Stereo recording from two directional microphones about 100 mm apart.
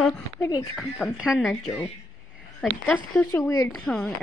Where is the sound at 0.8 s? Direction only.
10° right (ahead or behind).